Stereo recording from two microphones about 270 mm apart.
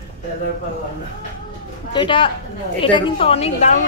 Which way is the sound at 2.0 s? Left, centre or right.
Centre.